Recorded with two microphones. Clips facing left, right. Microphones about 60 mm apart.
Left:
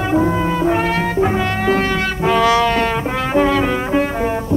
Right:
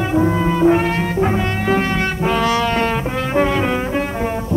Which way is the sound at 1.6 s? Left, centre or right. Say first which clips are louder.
Even; centre.